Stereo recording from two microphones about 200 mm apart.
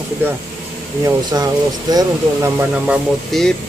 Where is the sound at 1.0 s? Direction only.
20° right (ahead or behind).